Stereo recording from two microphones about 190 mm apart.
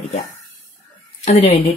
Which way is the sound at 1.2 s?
30° left (ahead or behind).